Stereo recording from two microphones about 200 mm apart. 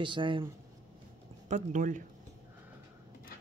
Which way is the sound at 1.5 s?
35° right (ahead or behind).